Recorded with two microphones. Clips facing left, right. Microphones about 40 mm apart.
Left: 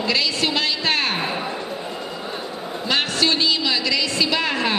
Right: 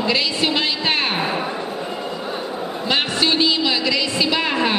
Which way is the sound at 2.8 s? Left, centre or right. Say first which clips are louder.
Right 1 dB; centre.